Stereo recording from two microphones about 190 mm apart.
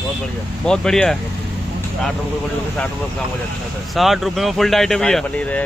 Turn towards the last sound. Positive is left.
turn(degrees=5)  # may be behind; listen again after turning